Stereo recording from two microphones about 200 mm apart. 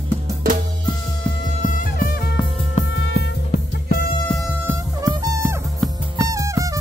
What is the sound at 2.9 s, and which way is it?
Music, 65° left (ahead or behind).